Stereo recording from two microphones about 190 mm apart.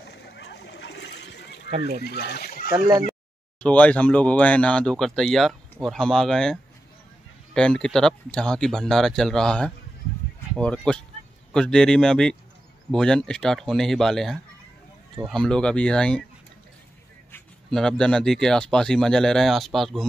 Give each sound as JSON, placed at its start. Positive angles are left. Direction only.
{"t": 0.1, "sound": "boat", "side_deg": 60}
{"t": 1.8, "sound": "speech", "side_deg": 60}
{"t": 3.6, "sound": "speech", "side_deg": 5}
{"t": 17.3, "sound": "speech", "side_deg": 0}